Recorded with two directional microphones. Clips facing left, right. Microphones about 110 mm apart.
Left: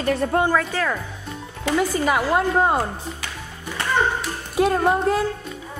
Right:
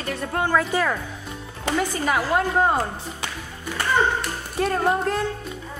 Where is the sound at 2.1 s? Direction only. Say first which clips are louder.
Even; 5° left (ahead or behind).